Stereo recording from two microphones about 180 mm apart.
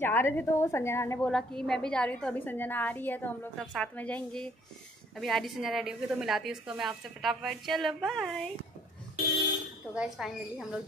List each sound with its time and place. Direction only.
0.0 s a woman's voice: 15° left (ahead or behind)
1.3 s a woman's voice: 5° left (ahead or behind)
9.9 s a woman's voice: 5° right (ahead or behind)